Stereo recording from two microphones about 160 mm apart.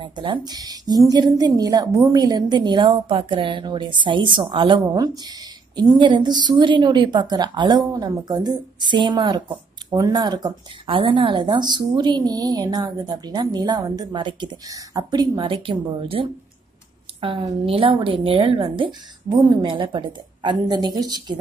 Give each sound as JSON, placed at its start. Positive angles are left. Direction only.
{"t": 0.0, "sound": "a woman's voice", "side_deg": -30}